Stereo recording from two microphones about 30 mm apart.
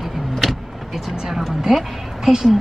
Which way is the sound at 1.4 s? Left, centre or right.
Centre.